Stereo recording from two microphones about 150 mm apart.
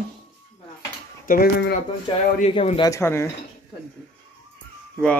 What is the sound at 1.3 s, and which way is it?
Speech, 70° left (ahead or behind).